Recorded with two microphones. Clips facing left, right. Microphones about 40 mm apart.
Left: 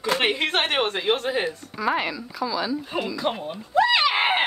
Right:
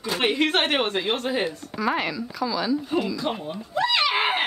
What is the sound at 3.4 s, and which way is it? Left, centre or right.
Speech, centre.